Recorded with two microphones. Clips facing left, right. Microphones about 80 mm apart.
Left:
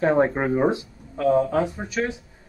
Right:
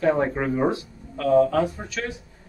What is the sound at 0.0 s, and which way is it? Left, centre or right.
Speech, left.